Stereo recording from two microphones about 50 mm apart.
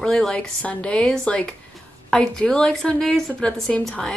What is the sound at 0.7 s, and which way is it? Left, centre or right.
A woman's voice, left.